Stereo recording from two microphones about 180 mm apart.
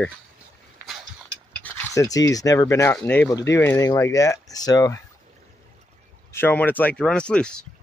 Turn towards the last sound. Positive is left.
turn(degrees=5)  # may be behind; listen again after turning